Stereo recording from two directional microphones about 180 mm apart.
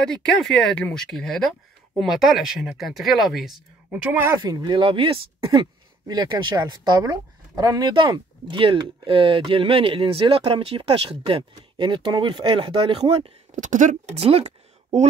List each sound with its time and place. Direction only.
0.1 s speech: 5° left (ahead or behind)
4.4 s speech: 20° right (ahead or behind)
13.6 s speech: 45° right (ahead or behind)